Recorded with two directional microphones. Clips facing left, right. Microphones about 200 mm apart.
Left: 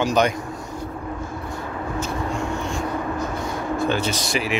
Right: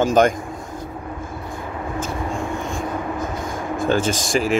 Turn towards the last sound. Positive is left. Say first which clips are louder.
# right 4 dB
turn(degrees=-45)  # may be behind; listen again after turning